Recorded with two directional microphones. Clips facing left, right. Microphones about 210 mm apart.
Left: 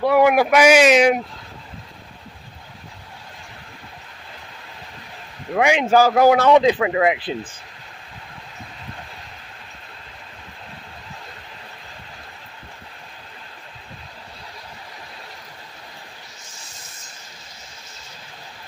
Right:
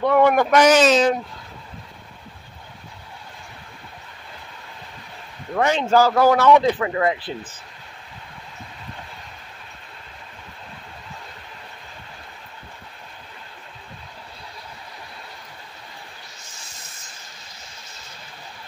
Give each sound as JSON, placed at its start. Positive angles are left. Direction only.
{"t": 0.0, "sound": "speech", "side_deg": 5}
{"t": 5.5, "sound": "speech", "side_deg": 15}